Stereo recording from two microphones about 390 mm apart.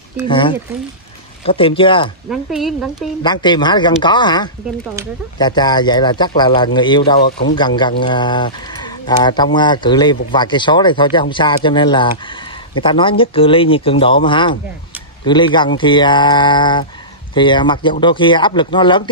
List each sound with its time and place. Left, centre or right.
0.3 s speech: centre
2.2 s speech: centre
3.2 s speech: centre
7.2 s speech: left
7.5 s speech: centre